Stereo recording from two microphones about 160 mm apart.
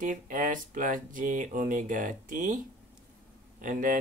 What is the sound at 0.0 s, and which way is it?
Speech, 55° right (ahead or behind).